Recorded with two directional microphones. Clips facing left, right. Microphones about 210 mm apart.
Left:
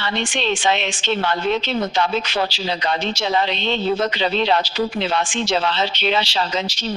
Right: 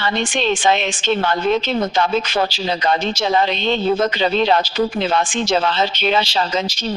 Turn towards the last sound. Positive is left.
turn(degrees=-45)  # may be behind; listen again after turning